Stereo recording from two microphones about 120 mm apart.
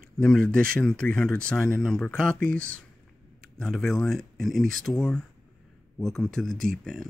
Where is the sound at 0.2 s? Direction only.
10° left (ahead or behind).